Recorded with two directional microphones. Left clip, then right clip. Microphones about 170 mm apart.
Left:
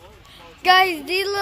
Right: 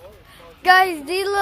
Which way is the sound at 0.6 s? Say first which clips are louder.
Right 1 dB; centre (ahead or behind).